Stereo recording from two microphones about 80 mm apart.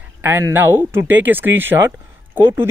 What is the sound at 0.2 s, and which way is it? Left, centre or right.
Speech, right.